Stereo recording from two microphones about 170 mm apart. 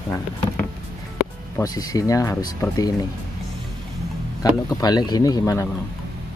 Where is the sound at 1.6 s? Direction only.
20° left (ahead or behind).